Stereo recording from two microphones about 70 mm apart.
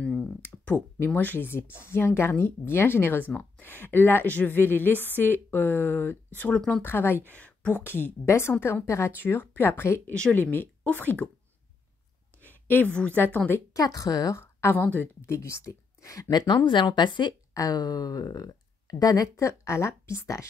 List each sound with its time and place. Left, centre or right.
0.7 s a woman's voice: left
7.3 s speech: left
9.2 s a woman's voice: left
12.4 s a sound: left
13.7 s a woman's voice: left
14.4 s a woman's voice: left
16.3 s speech: left